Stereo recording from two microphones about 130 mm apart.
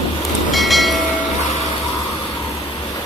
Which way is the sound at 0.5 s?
Centre (ahead or behind).